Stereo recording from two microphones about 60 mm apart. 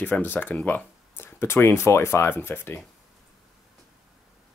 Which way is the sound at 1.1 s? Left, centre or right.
Left.